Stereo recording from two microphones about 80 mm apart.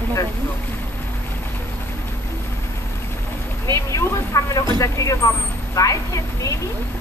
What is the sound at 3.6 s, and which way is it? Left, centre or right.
Speech, left.